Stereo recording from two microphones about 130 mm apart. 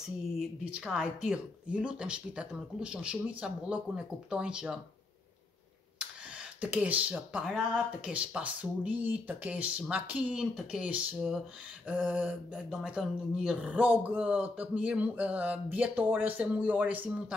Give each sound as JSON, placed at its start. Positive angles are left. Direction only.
{"t": 0.0, "sound": "speech", "side_deg": -5}
{"t": 5.9, "sound": "speech", "side_deg": -10}